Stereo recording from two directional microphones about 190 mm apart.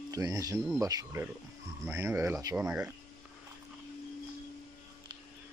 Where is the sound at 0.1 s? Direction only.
20° right (ahead or behind).